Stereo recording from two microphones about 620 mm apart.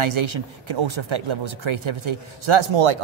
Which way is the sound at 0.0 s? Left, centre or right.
Right.